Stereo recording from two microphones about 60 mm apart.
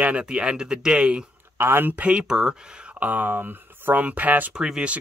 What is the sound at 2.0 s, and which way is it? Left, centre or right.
Speech, right.